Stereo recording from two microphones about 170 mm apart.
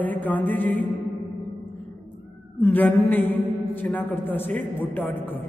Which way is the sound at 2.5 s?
10° left (ahead or behind).